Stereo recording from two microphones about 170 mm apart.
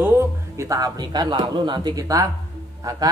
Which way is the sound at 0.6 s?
20° right (ahead or behind).